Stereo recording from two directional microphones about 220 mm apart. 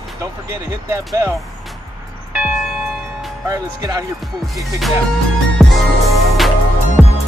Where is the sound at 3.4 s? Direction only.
15° right (ahead or behind).